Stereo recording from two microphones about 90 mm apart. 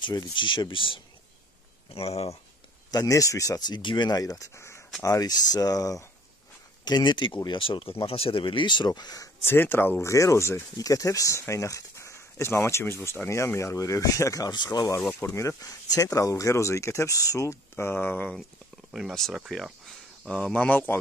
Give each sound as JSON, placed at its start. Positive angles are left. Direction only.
{"t": 0.0, "sound": "speech", "side_deg": 55}
{"t": 2.9, "sound": "speech", "side_deg": 40}
{"t": 5.0, "sound": "speech", "side_deg": 40}
{"t": 6.8, "sound": "speech", "side_deg": 55}
{"t": 8.0, "sound": "speech", "side_deg": 90}
{"t": 9.5, "sound": "speech", "side_deg": 25}
{"t": 14.5, "sound": "speech", "side_deg": 55}
{"t": 15.3, "sound": "speech", "side_deg": 40}
{"t": 18.9, "sound": "speech", "side_deg": 0}